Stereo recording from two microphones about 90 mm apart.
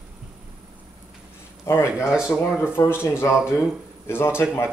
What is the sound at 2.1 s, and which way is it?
Speech, 10° right (ahead or behind).